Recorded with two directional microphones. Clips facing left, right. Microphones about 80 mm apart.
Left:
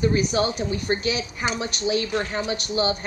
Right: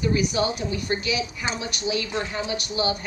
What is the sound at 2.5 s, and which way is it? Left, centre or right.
Speech, left.